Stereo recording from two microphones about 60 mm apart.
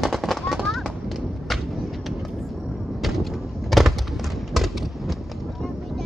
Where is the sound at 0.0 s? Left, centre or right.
Centre.